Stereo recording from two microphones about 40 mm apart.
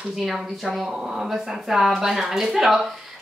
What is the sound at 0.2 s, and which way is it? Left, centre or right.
Speech, centre.